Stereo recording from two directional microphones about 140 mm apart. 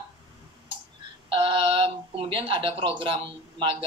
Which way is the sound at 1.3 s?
40° right (ahead or behind).